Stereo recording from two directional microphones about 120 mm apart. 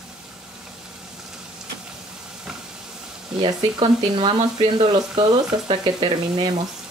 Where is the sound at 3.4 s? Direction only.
45° right (ahead or behind).